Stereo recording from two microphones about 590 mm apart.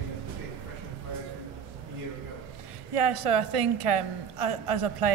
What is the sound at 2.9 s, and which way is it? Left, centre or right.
A woman's voice, right.